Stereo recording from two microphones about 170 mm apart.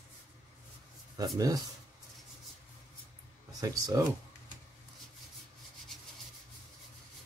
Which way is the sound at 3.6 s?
20° right (ahead or behind).